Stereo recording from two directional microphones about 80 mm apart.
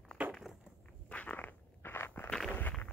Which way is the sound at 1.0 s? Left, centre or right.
Centre.